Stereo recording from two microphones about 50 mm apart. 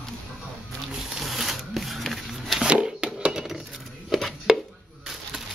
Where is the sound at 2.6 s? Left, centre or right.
Centre.